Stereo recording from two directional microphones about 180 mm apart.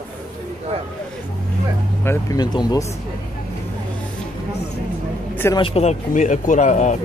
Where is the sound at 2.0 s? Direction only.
20° left (ahead or behind).